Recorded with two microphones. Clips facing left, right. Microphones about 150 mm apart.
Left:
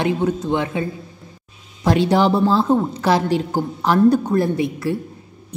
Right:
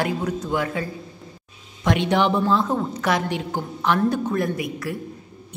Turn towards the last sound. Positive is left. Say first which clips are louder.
# left 6 dB
turn(degrees=30)  # may be behind; listen again after turning